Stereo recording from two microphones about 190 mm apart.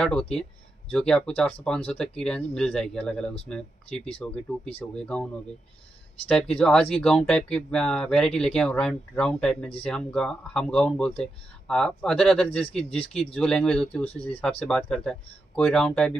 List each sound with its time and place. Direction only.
0.0 s speech: 5° left (ahead or behind)